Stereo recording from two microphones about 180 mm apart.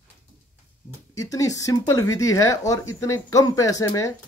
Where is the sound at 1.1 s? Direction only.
20° left (ahead or behind).